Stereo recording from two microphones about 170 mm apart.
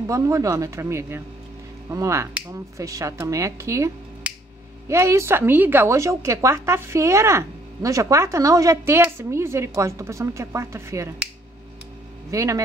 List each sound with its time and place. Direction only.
0.0 s a woman's voice: 20° right (ahead or behind)
12.3 s speech: 20° right (ahead or behind)